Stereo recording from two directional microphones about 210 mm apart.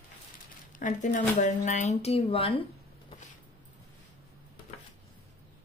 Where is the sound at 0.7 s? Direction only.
40° left (ahead or behind).